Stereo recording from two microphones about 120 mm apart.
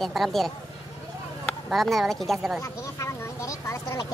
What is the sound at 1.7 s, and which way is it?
Speech, centre (ahead or behind).